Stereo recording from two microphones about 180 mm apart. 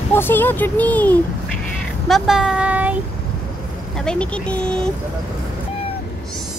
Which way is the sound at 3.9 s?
5° left (ahead or behind).